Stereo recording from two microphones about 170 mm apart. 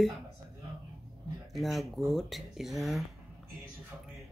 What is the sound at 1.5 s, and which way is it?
Speech, centre (ahead or behind).